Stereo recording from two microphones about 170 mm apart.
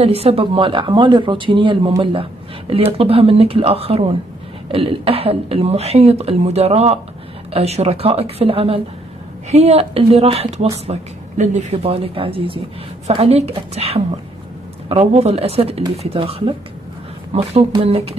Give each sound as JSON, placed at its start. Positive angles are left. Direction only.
{"t": 0.0, "sound": "speech", "side_deg": -35}
{"t": 3.0, "sound": "speech", "side_deg": -35}